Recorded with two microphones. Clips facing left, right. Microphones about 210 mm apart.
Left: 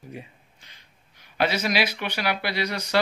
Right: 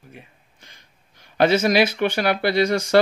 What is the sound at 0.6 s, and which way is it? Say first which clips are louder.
Speech: right 4 dB; 45° right (ahead or behind).